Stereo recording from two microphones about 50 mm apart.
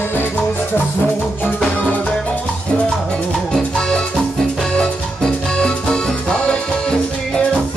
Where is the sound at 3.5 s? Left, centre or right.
Centre.